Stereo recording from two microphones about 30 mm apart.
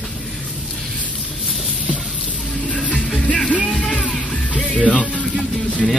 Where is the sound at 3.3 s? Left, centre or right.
Centre.